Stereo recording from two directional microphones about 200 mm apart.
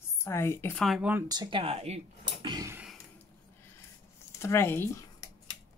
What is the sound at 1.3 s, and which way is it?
Speech, 25° right (ahead or behind).